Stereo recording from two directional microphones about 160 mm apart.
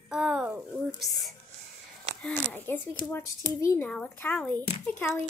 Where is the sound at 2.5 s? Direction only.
15° left (ahead or behind).